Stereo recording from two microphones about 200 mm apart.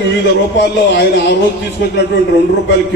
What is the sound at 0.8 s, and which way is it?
Speech, 55° left (ahead or behind).